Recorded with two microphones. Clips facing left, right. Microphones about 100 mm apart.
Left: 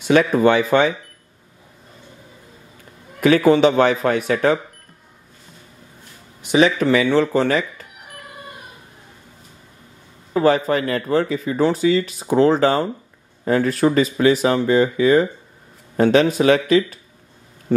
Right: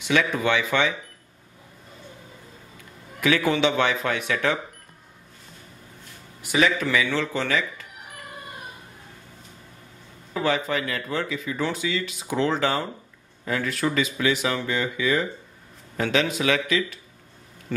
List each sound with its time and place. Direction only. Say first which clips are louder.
0.0 s speech: left 8 dB; 40° left (ahead or behind)
3.2 s speech: left 8 dB; 45° left (ahead or behind)
6.4 s speech: left 7 dB; 25° left (ahead or behind)
10.3 s speech: left 8 dB; 40° left (ahead or behind)